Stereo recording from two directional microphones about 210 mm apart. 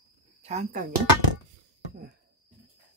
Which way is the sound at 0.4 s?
30° right (ahead or behind).